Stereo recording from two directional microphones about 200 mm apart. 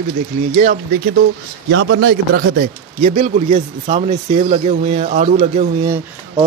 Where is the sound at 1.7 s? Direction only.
65° right (ahead or behind).